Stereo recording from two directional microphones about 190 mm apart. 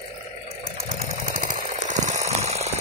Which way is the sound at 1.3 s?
45° right (ahead or behind).